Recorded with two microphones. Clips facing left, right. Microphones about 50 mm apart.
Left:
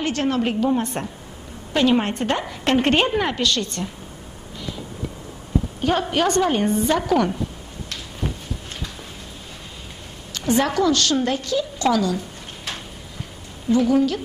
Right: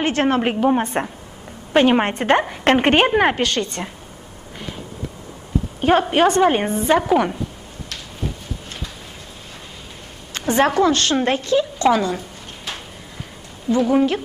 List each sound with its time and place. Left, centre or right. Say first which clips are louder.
0.0 s a woman's voice: right 4 dB; right
3.2 s a woman's voice: right 4 dB; right
5.8 s a woman's voice: right 6 dB; right
6.0 s a woman's voice: right 4 dB; right
10.3 s a woman's voice: right 3 dB; right
13.7 s a woman's voice: right 1 dB; right